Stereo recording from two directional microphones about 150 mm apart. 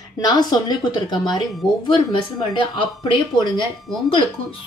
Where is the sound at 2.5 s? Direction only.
35° left (ahead or behind).